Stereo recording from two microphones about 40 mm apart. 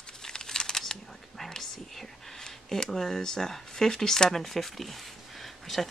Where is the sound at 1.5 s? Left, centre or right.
Centre.